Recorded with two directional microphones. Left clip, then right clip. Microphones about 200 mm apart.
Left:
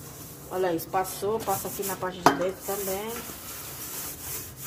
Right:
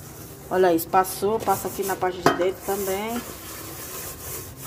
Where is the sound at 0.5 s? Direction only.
55° right (ahead or behind).